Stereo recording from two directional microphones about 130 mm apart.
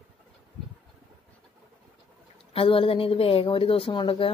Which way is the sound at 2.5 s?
45° left (ahead or behind).